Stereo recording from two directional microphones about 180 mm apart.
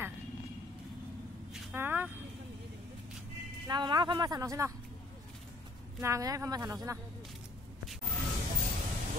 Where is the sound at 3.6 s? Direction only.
25° right (ahead or behind).